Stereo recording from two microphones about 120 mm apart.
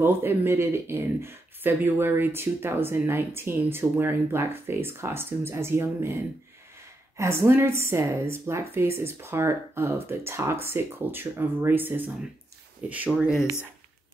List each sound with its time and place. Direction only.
0.0 s speech: 20° right (ahead or behind)
7.2 s speech: 20° right (ahead or behind)